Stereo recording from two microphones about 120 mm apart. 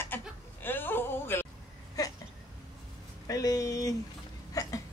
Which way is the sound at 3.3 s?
30° left (ahead or behind).